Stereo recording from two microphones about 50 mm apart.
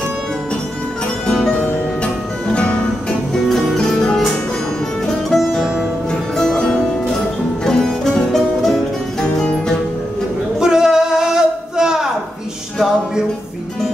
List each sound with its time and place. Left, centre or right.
2.5 s music: left
3.4 s music: centre
5.0 s music: centre
10.6 s a sound: centre